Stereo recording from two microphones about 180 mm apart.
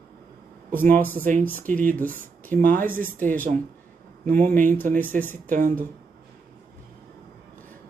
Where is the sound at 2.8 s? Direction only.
50° right (ahead or behind).